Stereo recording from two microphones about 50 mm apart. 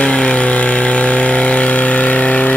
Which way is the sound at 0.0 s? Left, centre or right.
Left.